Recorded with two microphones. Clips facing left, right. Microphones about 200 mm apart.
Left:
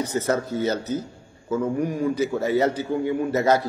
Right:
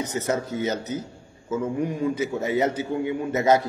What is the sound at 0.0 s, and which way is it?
A man's voice, 20° right (ahead or behind).